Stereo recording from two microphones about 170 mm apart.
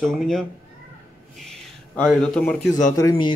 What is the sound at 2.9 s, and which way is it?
Speech, 25° left (ahead or behind).